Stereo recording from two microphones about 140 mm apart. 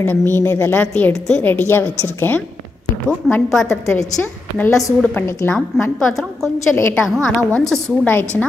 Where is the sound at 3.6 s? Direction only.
20° left (ahead or behind).